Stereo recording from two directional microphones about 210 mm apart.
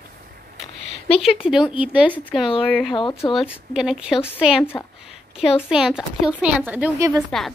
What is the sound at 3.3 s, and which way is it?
Speech, centre (ahead or behind).